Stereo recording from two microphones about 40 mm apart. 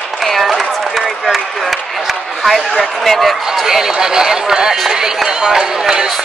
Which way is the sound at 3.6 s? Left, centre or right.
Centre.